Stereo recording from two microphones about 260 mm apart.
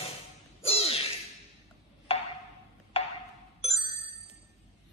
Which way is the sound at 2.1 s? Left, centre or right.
Left.